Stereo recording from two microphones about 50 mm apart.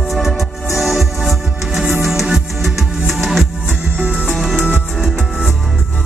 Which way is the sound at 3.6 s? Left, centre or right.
Right.